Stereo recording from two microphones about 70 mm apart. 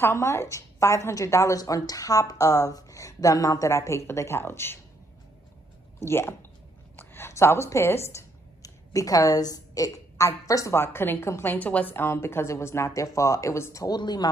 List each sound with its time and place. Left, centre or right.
0.0 s a woman's voice: left
5.9 s speech: left
10.7 s speech: left
11.5 s speech: left
13.8 s a woman's voice: left